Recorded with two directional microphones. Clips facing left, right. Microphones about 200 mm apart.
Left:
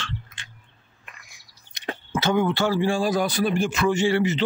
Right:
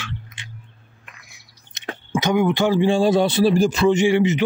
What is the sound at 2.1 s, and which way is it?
Speech, 15° right (ahead or behind).